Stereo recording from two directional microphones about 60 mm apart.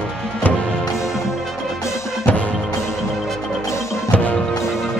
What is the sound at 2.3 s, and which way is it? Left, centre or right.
Music, left.